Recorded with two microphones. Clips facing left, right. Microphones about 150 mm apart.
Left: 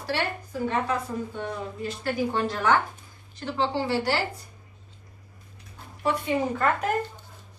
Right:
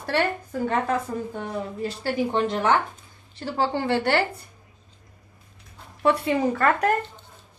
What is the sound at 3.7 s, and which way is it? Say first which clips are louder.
Speech: right 5 dB; 55° right (ahead or behind).